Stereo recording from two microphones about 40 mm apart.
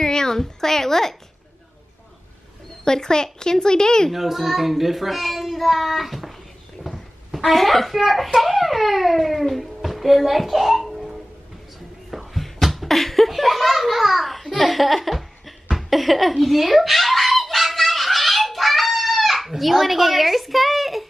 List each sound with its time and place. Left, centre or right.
0.0 s a woman's voice: centre
2.8 s a woman's voice: centre
4.1 s a child's voice: centre
6.8 s a sound: centre
7.2 s a child's voice: centre
12.1 s a sound: centre